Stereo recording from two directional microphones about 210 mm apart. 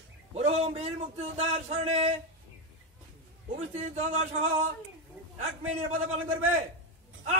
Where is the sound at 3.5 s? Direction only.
30° right (ahead or behind).